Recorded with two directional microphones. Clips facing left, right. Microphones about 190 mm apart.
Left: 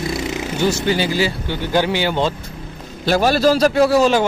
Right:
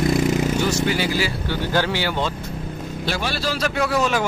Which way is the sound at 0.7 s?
25° left (ahead or behind).